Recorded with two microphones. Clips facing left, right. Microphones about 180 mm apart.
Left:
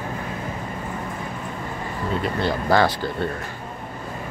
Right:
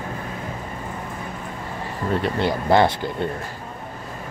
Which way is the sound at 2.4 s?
20° right (ahead or behind).